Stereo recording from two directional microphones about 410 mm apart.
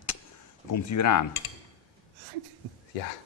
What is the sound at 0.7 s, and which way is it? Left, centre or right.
Speech, left.